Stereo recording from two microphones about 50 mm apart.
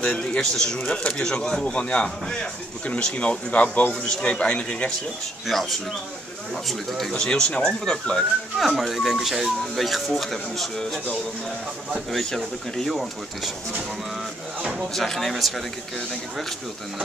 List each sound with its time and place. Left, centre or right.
0.0 s speech: centre
3.9 s speech: centre
5.5 s speech: centre
7.2 s speech: centre
8.5 s speech: centre
15.0 s speech: centre